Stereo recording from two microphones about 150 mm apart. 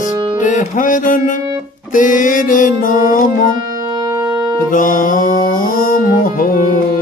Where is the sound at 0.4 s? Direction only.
55° left (ahead or behind).